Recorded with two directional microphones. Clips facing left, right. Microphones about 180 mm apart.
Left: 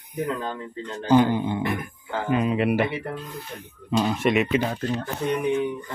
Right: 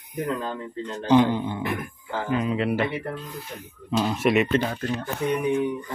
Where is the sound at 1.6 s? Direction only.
Centre (ahead or behind).